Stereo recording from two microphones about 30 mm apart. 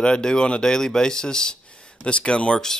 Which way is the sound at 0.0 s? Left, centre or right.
Left.